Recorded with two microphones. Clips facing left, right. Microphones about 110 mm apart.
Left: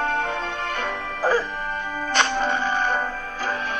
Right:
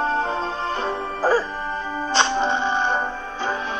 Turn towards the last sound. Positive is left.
turn(degrees=-30)  # may be behind; listen again after turning